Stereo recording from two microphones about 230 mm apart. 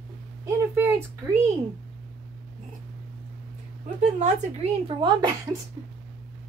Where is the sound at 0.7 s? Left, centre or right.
Centre.